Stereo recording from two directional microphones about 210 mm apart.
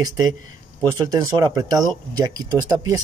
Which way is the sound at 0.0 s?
20° right (ahead or behind).